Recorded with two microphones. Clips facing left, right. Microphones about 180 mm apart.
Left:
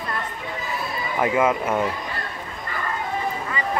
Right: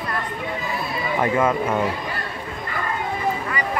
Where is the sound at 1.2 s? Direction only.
10° left (ahead or behind).